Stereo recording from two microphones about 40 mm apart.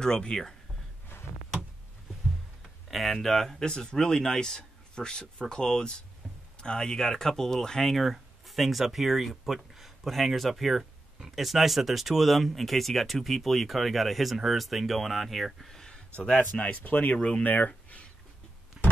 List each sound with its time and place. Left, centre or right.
0.0 s speech: centre
2.9 s speech: centre
8.0 s speech: centre
16.3 s speech: left
18.8 s a sound: centre